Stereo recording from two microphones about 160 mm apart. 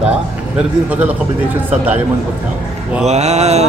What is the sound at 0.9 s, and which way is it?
A man's voice, 10° right (ahead or behind).